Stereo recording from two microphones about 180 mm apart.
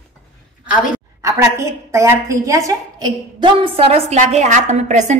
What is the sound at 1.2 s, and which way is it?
A woman's voice, 15° right (ahead or behind).